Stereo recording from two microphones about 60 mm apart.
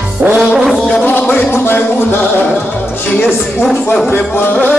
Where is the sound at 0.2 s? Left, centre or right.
Right.